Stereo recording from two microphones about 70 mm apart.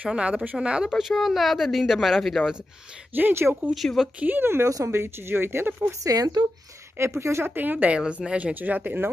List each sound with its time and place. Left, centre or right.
0.0 s speech: centre
0.8 s speech: centre
3.1 s speech: right
3.7 s speech: centre
4.2 s speech: right
4.6 s speech: right
4.9 s speech: right
6.0 s speech: right
7.0 s speech: right
7.5 s speech: right
8.0 s speech: centre
8.5 s speech: right